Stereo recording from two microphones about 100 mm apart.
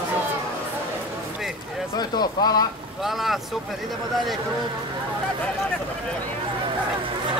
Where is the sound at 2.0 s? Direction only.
40° left (ahead or behind).